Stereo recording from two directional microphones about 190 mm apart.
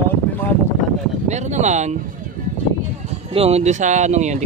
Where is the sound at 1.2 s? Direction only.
40° right (ahead or behind).